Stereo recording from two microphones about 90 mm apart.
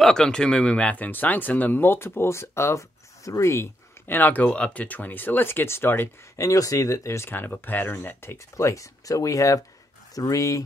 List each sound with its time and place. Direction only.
0.0 s speech: 5° left (ahead or behind); by 10.6 s 40° left (ahead or behind)